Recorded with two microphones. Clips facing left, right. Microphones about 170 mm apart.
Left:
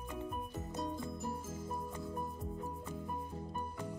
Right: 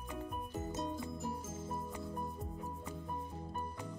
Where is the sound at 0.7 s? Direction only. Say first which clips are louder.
Left 1 dB; 5° right (ahead or behind).